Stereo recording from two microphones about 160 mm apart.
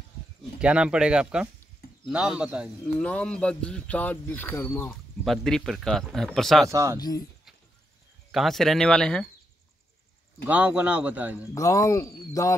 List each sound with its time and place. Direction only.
0.6 s speech: 5° right (ahead or behind)
3.0 s speech: 5° left (ahead or behind)
5.2 s speech: centre (ahead or behind)
6.7 s speech: 20° right (ahead or behind)
7.0 s speech: 25° left (ahead or behind)
8.3 s speech: centre (ahead or behind)
10.4 s speech: 10° right (ahead or behind)
11.5 s speech: 20° left (ahead or behind)